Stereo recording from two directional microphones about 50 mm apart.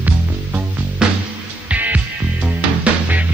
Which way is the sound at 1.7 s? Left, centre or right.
Right.